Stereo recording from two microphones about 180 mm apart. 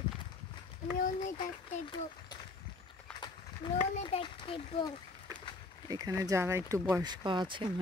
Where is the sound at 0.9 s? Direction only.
45° left (ahead or behind).